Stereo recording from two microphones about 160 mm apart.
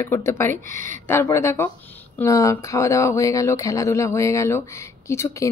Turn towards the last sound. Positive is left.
turn(degrees=15)  # may be behind; listen again after turning